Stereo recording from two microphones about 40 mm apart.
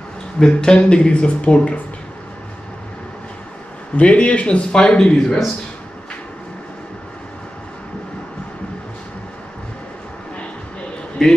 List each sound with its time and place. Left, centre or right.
0.5 s speech: left
3.9 s speech: left
11.2 s a man's voice: centre